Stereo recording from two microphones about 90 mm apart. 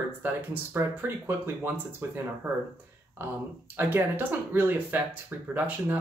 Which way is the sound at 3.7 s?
25° right (ahead or behind).